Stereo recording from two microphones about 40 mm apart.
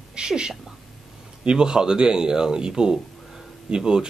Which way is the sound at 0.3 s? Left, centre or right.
Centre.